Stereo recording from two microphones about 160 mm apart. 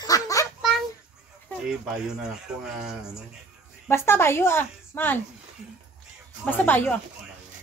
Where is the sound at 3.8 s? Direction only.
15° left (ahead or behind).